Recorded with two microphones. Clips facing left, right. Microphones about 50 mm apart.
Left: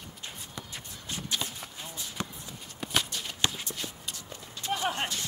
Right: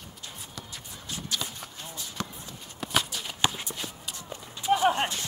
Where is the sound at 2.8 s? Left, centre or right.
Centre.